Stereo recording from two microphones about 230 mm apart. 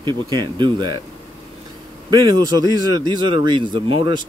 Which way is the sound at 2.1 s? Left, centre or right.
Centre.